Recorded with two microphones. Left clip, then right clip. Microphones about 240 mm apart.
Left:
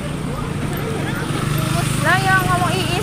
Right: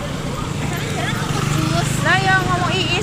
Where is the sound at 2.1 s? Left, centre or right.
Centre.